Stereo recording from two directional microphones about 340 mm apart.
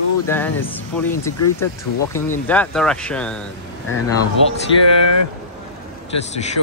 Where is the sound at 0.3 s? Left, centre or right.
Centre.